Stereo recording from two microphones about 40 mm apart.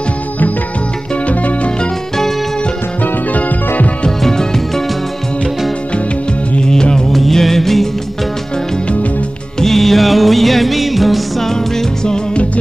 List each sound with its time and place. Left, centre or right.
1.2 s music: left
3.0 s music: left
4.2 s music: centre
6.6 s music: centre
7.1 s music of bollywood: centre
9.6 s music: centre
11.5 s music: centre